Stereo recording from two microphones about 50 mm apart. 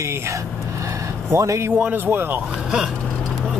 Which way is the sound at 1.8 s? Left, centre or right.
Right.